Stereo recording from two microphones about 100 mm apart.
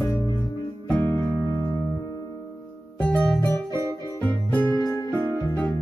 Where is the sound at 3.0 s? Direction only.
10° left (ahead or behind).